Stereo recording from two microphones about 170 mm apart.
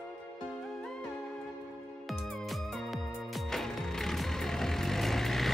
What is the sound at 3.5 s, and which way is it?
Vehicle, centre (ahead or behind).